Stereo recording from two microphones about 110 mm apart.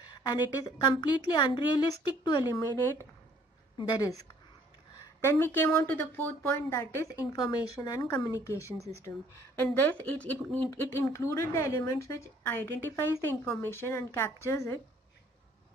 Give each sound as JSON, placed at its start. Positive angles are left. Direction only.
{"t": 0.0, "sound": "a woman's voice", "side_deg": 40}
{"t": 3.7, "sound": "a woman's voice", "side_deg": 35}
{"t": 5.2, "sound": "a woman's voice", "side_deg": 20}
{"t": 7.3, "sound": "a woman's voice", "side_deg": 40}
{"t": 9.8, "sound": "a woman's voice", "side_deg": 15}